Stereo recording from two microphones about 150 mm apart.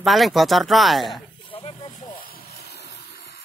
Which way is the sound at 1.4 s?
40° left (ahead or behind).